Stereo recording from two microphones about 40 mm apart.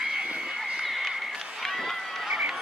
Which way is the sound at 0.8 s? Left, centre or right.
Centre.